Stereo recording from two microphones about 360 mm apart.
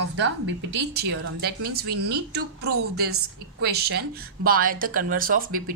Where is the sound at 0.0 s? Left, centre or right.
Right.